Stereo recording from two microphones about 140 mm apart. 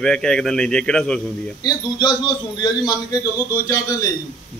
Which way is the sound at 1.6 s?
30° left (ahead or behind).